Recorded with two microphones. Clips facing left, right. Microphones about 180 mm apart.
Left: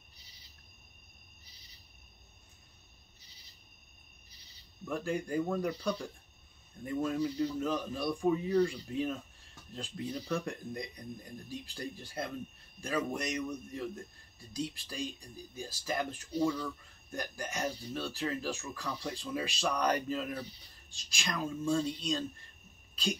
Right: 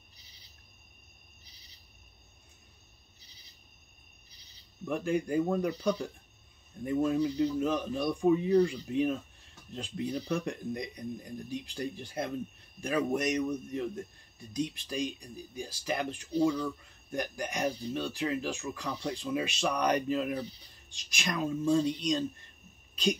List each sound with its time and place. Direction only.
4.8 s a man's voice: 15° right (ahead or behind)